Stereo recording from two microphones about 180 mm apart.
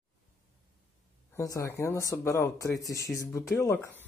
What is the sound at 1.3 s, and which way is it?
Speech, 20° left (ahead or behind).